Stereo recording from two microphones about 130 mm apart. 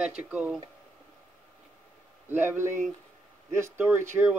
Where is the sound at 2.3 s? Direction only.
15° right (ahead or behind).